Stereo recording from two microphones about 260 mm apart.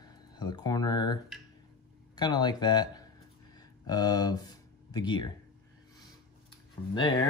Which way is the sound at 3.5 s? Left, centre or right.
Centre.